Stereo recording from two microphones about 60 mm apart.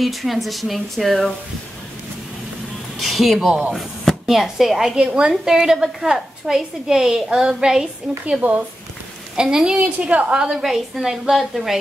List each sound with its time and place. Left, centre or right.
0.0 s speech: centre
3.0 s speech: centre
4.9 s a woman's voice: centre
8.4 s speech: right
9.4 s a woman's voice: centre
9.8 s a woman's voice: right; by 11.8 s centre